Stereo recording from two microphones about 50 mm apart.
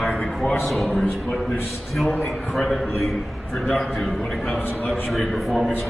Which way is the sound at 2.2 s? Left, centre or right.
Centre.